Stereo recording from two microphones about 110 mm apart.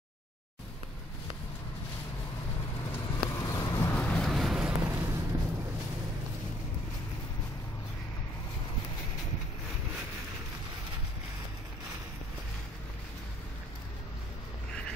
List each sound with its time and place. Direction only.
2.9 s vehicle: 25° left (ahead or behind)
4.0 s vehicle: 10° left (ahead or behind)
4.3 s vehicle: centre (ahead or behind)
4.8 s a sound: 25° right (ahead or behind)